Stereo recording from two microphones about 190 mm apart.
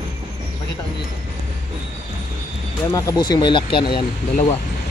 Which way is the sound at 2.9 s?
20° left (ahead or behind).